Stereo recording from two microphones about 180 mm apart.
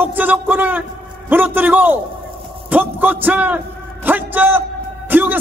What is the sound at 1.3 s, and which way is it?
A man's voice, 10° right (ahead or behind).